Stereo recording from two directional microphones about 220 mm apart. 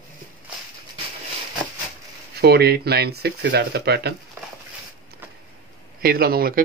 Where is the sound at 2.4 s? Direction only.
45° right (ahead or behind).